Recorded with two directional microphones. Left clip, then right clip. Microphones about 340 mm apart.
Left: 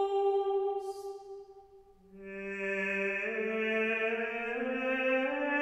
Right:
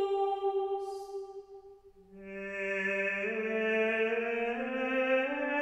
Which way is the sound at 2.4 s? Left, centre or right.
Centre.